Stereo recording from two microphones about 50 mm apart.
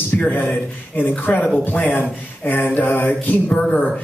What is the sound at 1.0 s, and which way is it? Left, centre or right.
Speech, left.